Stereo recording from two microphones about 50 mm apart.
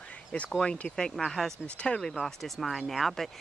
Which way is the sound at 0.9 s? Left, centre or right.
Centre.